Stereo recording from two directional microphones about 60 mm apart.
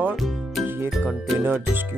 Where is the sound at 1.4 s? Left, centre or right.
Right.